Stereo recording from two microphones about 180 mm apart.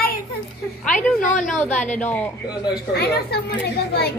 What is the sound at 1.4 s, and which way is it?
Speech, 5° left (ahead or behind).